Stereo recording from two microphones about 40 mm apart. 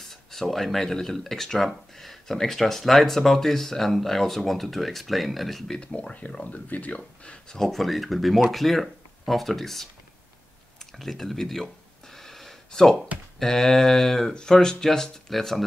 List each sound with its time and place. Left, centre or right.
0.0 s speech: centre
5.9 s speech: left
6.9 s speech: left
7.5 s speech: centre
11.0 s speech: centre
12.2 s a sound: centre
13.4 s speech: centre